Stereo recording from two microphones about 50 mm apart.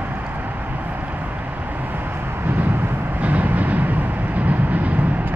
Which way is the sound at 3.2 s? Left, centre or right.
Right.